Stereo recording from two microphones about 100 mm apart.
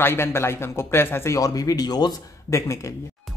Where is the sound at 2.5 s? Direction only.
30° left (ahead or behind).